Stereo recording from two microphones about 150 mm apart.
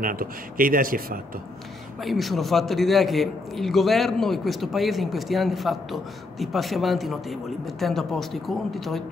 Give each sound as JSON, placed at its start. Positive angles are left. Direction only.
{"t": 0.0, "sound": "speech", "side_deg": -70}
{"t": 2.0, "sound": "a man's voice", "side_deg": 0}